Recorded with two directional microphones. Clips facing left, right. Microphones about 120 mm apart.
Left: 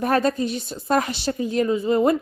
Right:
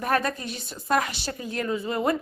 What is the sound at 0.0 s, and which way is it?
A woman's voice, 30° left (ahead or behind).